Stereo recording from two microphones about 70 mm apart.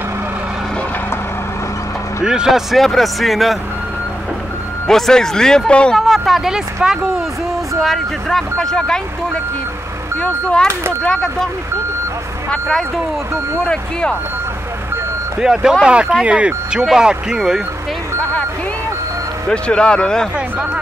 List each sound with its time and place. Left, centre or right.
2.2 s speech: centre
4.8 s speech: centre
5.9 s speech: centre
7.8 s speech: centre
12.6 s speech: centre
15.3 s speech: centre
19.5 s speech: centre
20.3 s speech: right